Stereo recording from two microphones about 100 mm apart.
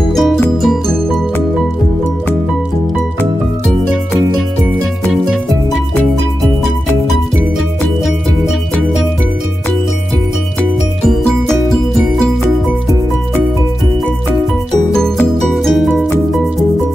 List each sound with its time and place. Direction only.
0.1 s music: centre (ahead or behind)
8.0 s music: centre (ahead or behind)
15.3 s music: centre (ahead or behind)